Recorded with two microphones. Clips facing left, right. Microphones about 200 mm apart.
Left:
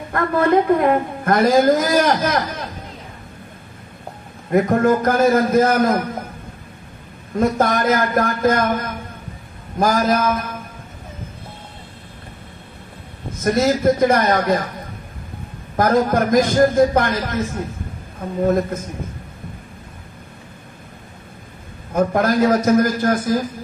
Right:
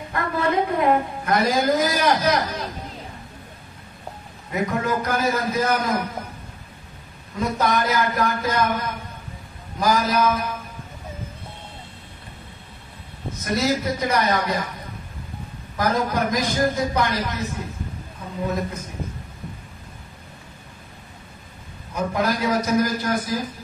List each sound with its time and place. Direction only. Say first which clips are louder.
0.1 s a woman's voice: left 7 dB; 50° left (ahead or behind)
4.5 s a man's voice: left 9 dB; 50° left (ahead or behind)
7.3 s a man's voice: left 5 dB; 50° left (ahead or behind)
13.4 s a man's voice: left 6 dB; 50° left (ahead or behind)
15.7 s a man's voice: left 6 dB; 50° left (ahead or behind)
21.9 s a man's voice: left 7 dB; 50° left (ahead or behind)